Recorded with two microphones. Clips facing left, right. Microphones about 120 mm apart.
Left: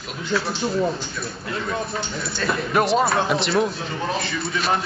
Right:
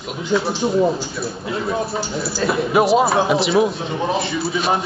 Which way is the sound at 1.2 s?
10° right (ahead or behind).